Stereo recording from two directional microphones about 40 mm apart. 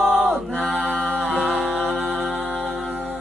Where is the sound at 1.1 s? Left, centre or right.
Centre.